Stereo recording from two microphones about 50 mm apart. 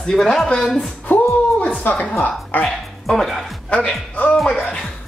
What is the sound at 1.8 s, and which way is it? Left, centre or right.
Speech, left.